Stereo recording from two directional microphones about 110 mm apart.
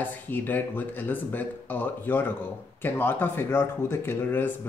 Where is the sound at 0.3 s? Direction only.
15° left (ahead or behind).